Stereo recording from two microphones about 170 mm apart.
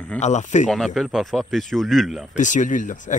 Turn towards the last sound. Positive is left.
turn(degrees=50)  # may be behind; listen again after turning